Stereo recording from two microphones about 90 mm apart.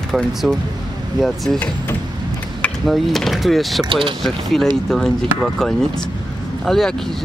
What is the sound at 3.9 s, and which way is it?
Speech, 75° right (ahead or behind).